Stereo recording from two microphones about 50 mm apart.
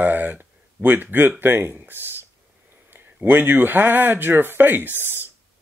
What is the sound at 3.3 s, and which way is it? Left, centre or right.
Speech, right.